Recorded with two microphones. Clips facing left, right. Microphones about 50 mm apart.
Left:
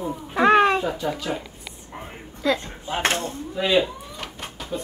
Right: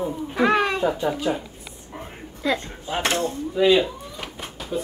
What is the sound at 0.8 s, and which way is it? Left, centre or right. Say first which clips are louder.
Speech: right 4 dB; right.